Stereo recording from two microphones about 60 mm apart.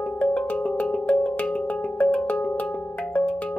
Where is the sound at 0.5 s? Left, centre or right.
Left.